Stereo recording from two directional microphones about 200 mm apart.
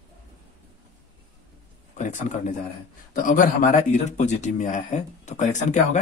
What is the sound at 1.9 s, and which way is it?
Speech, 40° left (ahead or behind).